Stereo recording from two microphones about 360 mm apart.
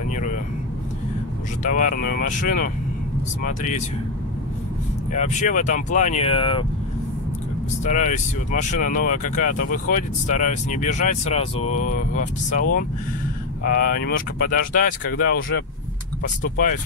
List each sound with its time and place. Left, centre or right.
0.1 s vehicle: left
1.6 s speech: left
5.1 s speech: centre
7.8 s speech: left
13.7 s speech: left